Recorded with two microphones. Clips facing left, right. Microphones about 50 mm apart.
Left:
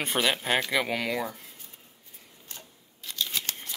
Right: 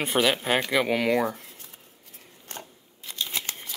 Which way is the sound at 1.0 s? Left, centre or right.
Right.